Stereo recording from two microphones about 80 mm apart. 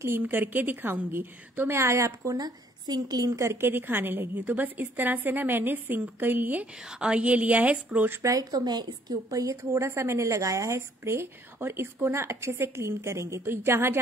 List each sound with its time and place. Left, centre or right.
0.0 s speech: right
3.3 s a woman's voice: right
8.1 s speech: right